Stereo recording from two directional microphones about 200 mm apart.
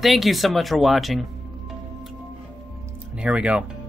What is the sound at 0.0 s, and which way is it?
Speech, centre (ahead or behind).